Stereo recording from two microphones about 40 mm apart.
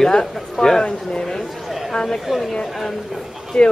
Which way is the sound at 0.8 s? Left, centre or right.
Left.